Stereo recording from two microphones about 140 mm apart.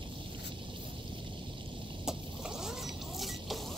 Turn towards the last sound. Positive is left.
turn(degrees=0)  # may be behind; listen again after turning